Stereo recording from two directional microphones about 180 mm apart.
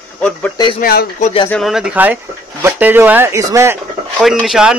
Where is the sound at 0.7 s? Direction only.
55° left (ahead or behind).